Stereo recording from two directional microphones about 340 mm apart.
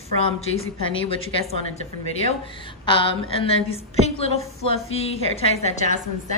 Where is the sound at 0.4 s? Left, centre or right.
Left.